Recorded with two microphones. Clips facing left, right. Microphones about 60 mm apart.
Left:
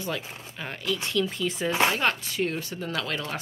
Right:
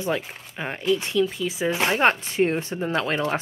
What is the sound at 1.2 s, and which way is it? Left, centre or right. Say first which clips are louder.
Speech: right 4 dB; centre.